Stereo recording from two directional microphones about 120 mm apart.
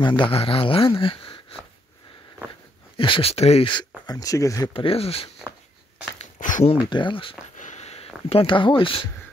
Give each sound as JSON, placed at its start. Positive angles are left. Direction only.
{"t": 0.0, "sound": "speech", "side_deg": 40}
{"t": 3.0, "sound": "speech", "side_deg": 50}
{"t": 3.6, "sound": "speech", "side_deg": 35}
{"t": 4.7, "sound": "speech", "side_deg": 55}
{"t": 6.1, "sound": "a sound", "side_deg": 85}
{"t": 6.8, "sound": "speech", "side_deg": 40}
{"t": 7.5, "sound": "a sound", "side_deg": 80}